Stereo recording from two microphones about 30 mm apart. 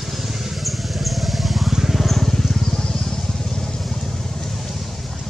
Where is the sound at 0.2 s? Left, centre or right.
Centre.